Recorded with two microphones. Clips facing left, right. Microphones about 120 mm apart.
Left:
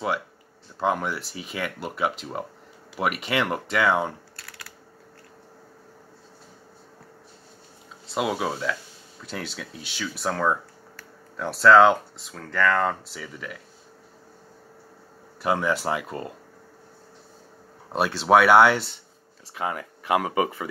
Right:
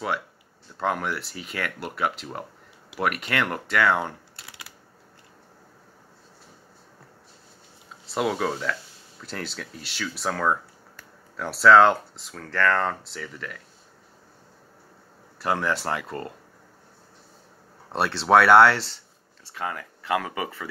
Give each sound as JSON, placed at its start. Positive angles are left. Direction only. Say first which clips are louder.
{"t": 0.7, "sound": "speech", "louder": "left 2 dB", "side_deg": 0}
{"t": 4.4, "sound": "typing", "louder": "left 1 dB", "side_deg": -20}
{"t": 8.1, "sound": "speech", "louder": "right 1 dB", "side_deg": 5}
{"t": 11.3, "sound": "speech", "louder": "even", "side_deg": 0}
{"t": 15.4, "sound": "speech", "louder": "left 2 dB", "side_deg": 5}
{"t": 17.9, "sound": "speech", "louder": "even", "side_deg": 5}
{"t": 19.5, "sound": "speech", "louder": "left 3 dB", "side_deg": 20}